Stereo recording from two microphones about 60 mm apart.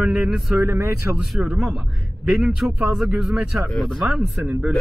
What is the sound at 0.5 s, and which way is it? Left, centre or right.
Speech, right.